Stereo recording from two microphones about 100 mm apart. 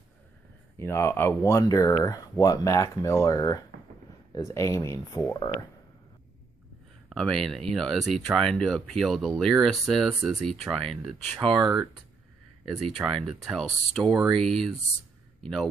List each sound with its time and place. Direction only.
0.7 s speech: 25° left (ahead or behind)
7.2 s speech: 5° left (ahead or behind)
12.6 s speech: 5° right (ahead or behind)